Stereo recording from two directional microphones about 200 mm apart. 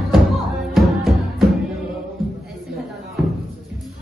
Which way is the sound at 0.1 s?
Centre (ahead or behind).